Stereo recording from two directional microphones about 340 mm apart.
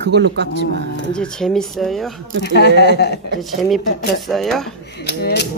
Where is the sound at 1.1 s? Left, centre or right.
Centre.